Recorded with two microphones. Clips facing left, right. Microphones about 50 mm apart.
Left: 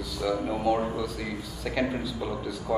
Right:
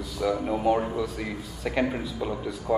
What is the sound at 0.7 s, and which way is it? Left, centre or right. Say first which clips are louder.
Speech: right 2 dB; right.